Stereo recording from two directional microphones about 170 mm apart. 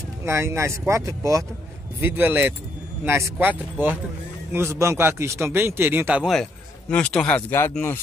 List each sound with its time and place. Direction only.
0.2 s a man's voice: 15° right (ahead or behind); by 8.0 s 10° left (ahead or behind)